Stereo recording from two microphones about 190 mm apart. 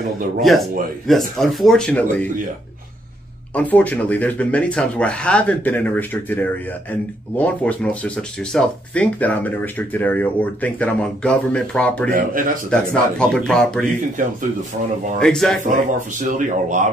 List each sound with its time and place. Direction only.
0.4 s a man's voice: centre (ahead or behind)
3.5 s speech: 10° left (ahead or behind)
12.1 s speech: 45° right (ahead or behind)
12.9 s a man's voice: 5° left (ahead or behind)
15.1 s a man's voice: centre (ahead or behind)
15.6 s speech: 40° right (ahead or behind)